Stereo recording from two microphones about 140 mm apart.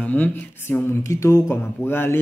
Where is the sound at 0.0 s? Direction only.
10° left (ahead or behind).